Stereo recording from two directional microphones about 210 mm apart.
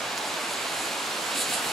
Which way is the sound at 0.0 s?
Centre (ahead or behind).